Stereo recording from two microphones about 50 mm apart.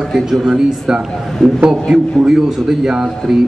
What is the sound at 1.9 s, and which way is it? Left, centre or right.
A man's voice, centre.